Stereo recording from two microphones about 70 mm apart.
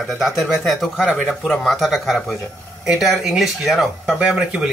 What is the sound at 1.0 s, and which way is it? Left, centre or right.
Speech, left.